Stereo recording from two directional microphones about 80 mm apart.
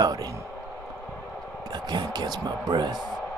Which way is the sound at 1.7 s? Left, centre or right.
Right.